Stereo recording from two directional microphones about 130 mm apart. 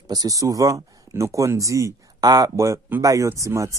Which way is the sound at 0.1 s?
30° right (ahead or behind).